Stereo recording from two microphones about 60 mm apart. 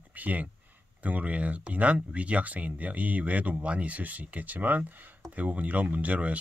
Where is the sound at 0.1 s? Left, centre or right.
Right.